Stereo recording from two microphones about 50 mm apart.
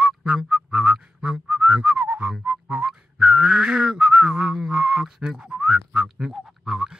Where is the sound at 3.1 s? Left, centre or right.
Centre.